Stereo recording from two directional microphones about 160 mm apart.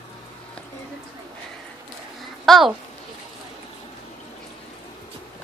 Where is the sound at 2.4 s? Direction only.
Centre (ahead or behind).